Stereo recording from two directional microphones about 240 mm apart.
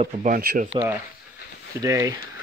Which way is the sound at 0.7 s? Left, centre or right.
Centre.